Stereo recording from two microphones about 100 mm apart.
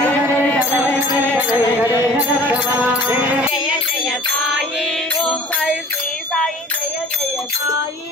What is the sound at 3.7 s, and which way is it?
Music, 10° right (ahead or behind).